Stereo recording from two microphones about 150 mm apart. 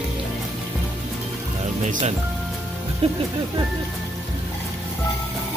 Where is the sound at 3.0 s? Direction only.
40° right (ahead or behind).